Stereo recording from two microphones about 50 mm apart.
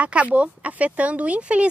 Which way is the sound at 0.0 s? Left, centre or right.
Right.